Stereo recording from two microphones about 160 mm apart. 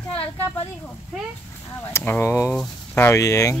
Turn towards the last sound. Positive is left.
turn(degrees=20)  # may be behind; listen again after turning